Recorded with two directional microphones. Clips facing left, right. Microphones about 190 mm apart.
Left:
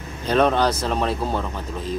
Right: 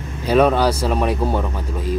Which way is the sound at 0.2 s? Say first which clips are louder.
Right 3 dB; 10° right (ahead or behind).